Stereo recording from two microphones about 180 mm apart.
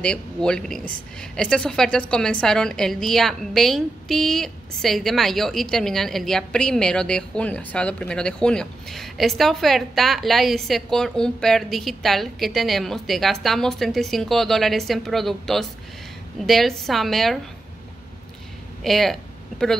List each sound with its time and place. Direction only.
0.0 s speech: 5° left (ahead or behind)
18.8 s speech: centre (ahead or behind)